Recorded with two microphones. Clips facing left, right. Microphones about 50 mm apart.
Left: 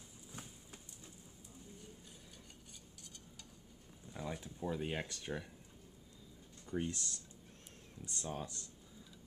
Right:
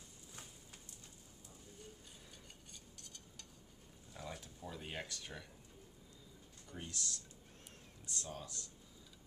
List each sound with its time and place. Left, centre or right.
0.3 s a sound: centre
3.0 s stir: centre
4.1 s speech: centre
6.6 s speech: left